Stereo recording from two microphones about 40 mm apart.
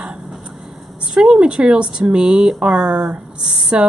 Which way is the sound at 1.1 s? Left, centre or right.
Right.